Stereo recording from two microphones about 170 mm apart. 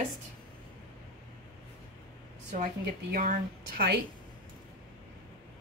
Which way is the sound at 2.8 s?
55° right (ahead or behind).